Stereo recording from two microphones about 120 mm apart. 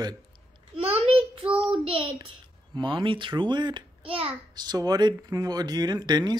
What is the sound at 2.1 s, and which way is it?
Speech, 40° right (ahead or behind).